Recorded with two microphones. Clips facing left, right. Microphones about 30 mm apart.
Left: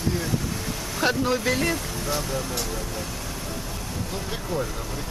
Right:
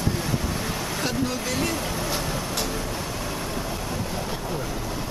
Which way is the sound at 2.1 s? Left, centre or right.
Centre.